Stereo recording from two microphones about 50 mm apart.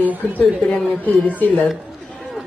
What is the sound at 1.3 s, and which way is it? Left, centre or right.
Speech, left.